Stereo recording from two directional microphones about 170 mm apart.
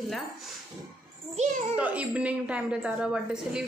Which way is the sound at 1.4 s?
45° right (ahead or behind).